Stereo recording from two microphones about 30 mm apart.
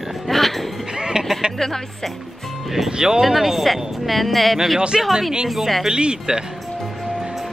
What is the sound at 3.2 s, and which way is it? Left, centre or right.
Speech, centre.